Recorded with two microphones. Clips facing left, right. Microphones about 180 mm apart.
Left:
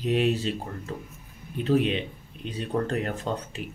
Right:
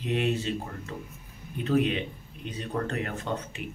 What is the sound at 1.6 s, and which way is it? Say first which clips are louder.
Speech: left 2 dB; 30° left (ahead or behind).